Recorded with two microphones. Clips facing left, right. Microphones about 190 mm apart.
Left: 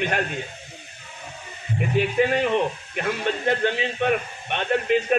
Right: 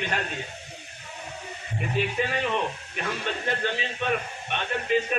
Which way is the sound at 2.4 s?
55° left (ahead or behind).